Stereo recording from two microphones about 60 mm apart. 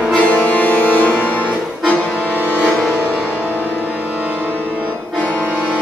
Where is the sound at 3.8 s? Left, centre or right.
Right.